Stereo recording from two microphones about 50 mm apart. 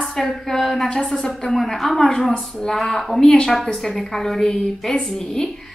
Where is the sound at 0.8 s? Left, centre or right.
Centre.